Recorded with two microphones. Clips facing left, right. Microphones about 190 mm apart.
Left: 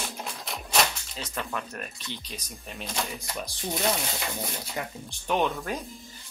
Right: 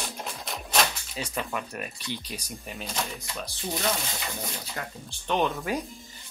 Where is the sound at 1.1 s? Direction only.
10° right (ahead or behind).